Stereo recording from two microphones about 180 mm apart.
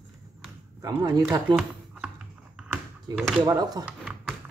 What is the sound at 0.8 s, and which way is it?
Speech, 20° right (ahead or behind).